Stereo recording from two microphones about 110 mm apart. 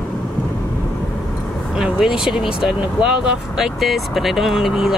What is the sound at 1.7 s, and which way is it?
Speech, 5° right (ahead or behind).